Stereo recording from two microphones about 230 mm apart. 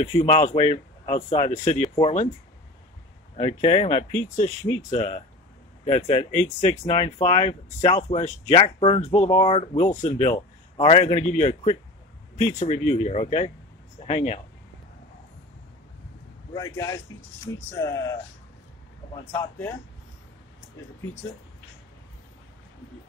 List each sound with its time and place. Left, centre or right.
0.0 s speech: left
3.3 s speech: left
16.5 s speech: centre